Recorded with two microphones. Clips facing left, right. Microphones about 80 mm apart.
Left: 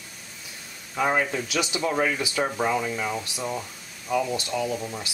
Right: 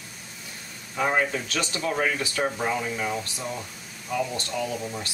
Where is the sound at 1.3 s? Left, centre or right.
Centre.